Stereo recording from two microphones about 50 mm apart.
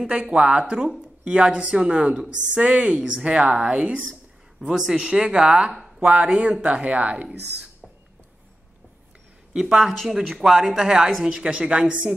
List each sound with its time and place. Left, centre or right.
0.0 s speech: right
4.6 s speech: centre
9.6 s speech: centre
11.2 s speech: centre